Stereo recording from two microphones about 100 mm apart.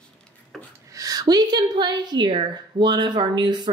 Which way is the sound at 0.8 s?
35° right (ahead or behind).